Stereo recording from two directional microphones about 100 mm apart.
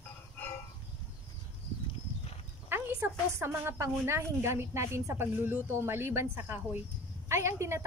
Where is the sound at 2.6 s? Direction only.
20° right (ahead or behind).